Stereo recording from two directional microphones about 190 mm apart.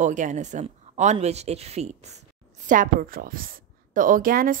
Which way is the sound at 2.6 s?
45° right (ahead or behind).